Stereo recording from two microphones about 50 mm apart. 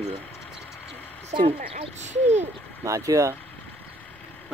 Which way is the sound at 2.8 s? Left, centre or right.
Right.